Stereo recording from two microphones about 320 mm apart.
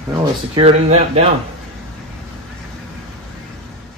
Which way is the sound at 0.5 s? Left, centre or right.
Centre.